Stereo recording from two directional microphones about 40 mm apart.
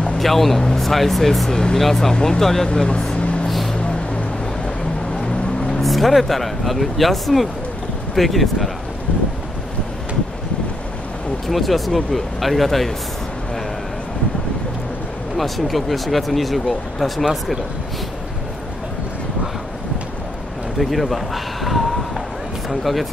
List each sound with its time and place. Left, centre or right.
0.2 s speech: centre
1.5 s speech: centre
1.8 s speech: centre; by 3.4 s left
3.4 s vehicle: centre
5.8 s speech: centre
11.4 s speech: centre
15.3 s speech: centre
20.8 s speech: centre